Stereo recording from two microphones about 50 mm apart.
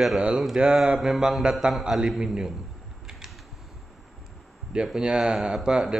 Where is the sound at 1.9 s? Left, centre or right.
Centre.